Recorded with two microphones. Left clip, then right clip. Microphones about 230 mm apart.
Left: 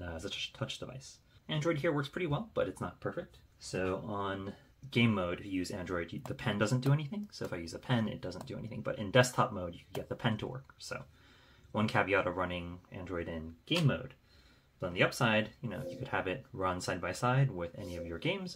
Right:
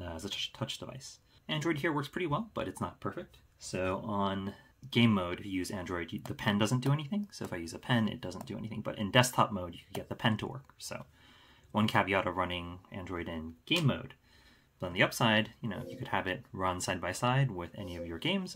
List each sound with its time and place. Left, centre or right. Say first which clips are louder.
0.0 s speech: right 2 dB; right